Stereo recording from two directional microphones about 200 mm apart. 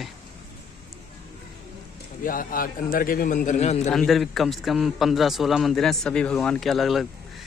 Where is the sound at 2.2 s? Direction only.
45° left (ahead or behind).